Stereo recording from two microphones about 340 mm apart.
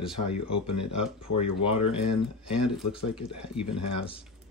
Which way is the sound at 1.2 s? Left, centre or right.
Left.